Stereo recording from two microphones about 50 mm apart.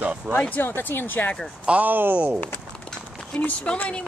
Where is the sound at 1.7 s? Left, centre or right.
Right.